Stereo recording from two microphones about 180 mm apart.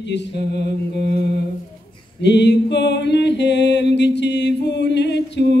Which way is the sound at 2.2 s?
75° left (ahead or behind).